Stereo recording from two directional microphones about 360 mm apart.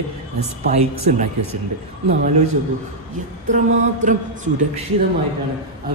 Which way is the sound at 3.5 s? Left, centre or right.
Right.